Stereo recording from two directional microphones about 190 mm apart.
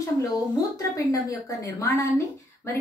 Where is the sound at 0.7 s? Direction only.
20° left (ahead or behind).